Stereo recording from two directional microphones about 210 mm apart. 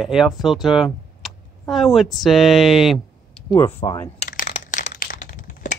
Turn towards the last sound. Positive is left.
turn(degrees=40)  # may be behind; listen again after turning